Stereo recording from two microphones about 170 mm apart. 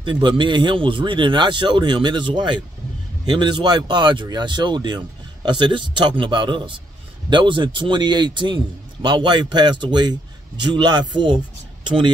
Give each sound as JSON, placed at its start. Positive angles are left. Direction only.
{"t": 0.0, "sound": "speech", "side_deg": -30}